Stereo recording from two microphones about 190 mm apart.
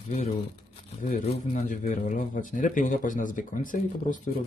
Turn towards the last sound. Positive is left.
turn(degrees=45)  # may be behind; listen again after turning